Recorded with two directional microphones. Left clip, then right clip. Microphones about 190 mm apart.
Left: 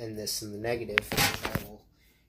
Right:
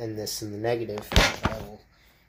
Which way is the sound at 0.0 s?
20° right (ahead or behind).